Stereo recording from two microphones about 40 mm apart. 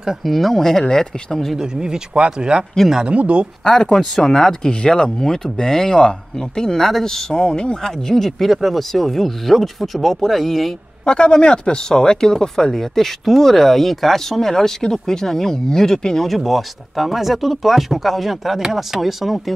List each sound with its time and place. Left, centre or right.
0.2 s speech: centre
1.6 s speech: centre
3.7 s speech: centre
11.1 s speech: left
16.3 s speech: centre